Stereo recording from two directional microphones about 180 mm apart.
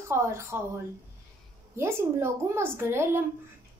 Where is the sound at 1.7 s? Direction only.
15° right (ahead or behind).